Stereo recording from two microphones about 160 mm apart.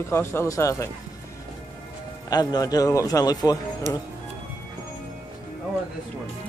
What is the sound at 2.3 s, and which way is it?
Speech, 25° left (ahead or behind).